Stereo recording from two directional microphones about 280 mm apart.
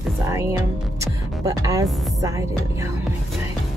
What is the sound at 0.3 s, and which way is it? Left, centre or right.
Music, centre.